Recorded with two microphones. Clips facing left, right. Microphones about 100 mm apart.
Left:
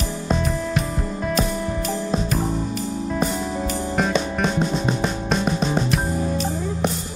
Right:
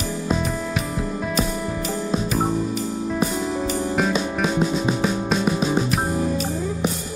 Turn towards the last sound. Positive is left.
turn(degrees=-5)  # may be behind; listen again after turning